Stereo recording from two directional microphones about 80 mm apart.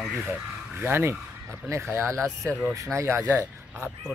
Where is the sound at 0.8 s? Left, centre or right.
Right.